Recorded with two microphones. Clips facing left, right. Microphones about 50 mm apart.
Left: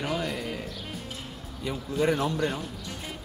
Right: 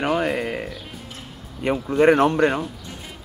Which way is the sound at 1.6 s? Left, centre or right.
Right.